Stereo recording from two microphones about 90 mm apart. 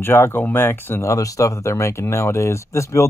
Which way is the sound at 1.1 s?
40° left (ahead or behind).